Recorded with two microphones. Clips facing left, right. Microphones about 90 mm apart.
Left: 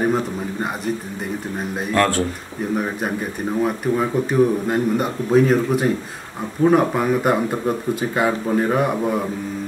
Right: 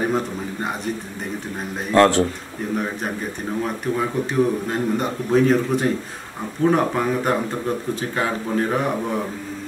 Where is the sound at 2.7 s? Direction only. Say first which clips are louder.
Left 2 dB; 10° left (ahead or behind).